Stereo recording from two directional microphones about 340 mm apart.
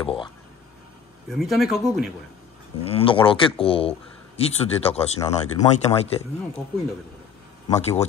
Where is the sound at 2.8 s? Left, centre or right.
Centre.